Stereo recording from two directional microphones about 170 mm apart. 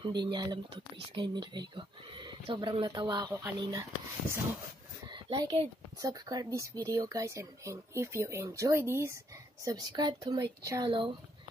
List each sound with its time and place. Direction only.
0.0 s speech: 25° right (ahead or behind)
5.1 s speech: 25° right (ahead or behind)